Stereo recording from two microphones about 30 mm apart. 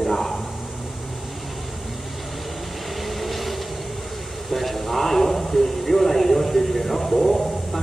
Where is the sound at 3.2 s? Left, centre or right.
Centre.